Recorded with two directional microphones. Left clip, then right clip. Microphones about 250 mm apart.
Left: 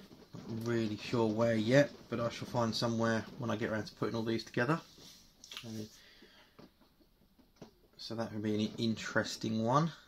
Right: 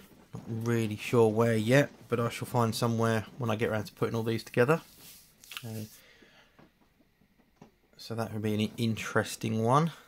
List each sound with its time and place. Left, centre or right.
0.3 s speech: right
8.2 s speech: right